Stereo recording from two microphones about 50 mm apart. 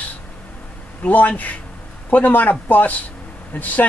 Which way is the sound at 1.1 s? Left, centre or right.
Left.